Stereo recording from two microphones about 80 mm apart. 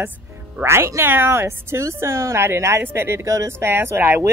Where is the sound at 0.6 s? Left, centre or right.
Right.